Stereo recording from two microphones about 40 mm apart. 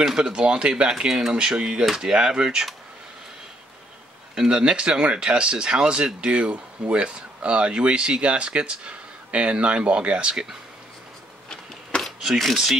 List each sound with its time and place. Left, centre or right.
0.2 s speech: right
0.8 s speech: centre
1.3 s speech: right
4.4 s speech: right
11.4 s a sound: left